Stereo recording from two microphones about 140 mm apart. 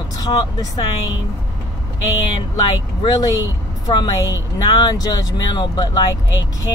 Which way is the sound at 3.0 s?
30° left (ahead or behind).